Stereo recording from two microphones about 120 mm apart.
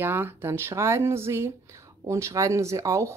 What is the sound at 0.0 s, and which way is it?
Speech, 15° right (ahead or behind).